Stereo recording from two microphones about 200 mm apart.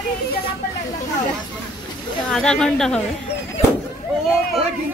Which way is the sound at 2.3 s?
5° left (ahead or behind).